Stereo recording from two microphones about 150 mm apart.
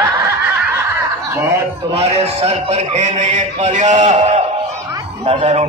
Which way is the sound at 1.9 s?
45° right (ahead or behind).